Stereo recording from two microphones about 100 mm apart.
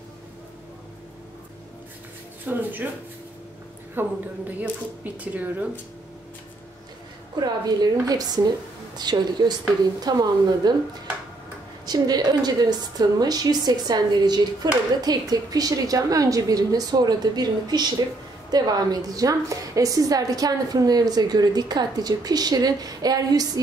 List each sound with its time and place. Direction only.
2.4 s speech: 20° right (ahead or behind)
4.0 s speech: 20° right (ahead or behind)
7.3 s a woman's voice: 40° right (ahead or behind)
11.8 s a woman's voice: 40° right (ahead or behind)